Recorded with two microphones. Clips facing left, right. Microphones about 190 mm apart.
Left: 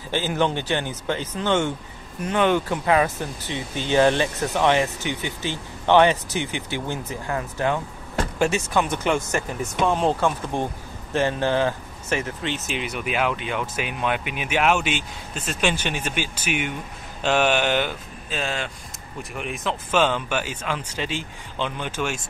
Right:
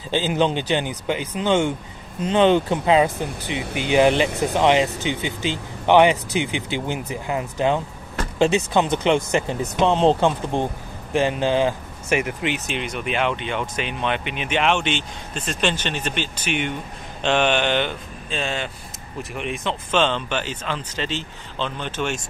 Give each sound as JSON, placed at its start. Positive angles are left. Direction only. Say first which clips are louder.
{"t": 0.1, "sound": "speech", "louder": "right 3 dB", "side_deg": -20}
{"t": 12.6, "sound": "speech", "louder": "right 1 dB", "side_deg": 5}